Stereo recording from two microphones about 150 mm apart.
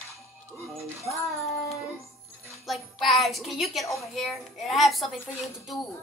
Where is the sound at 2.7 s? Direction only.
Centre (ahead or behind).